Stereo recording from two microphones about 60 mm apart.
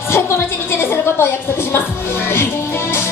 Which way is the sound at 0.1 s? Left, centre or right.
Left.